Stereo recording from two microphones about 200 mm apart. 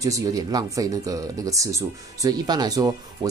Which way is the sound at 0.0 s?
15° right (ahead or behind).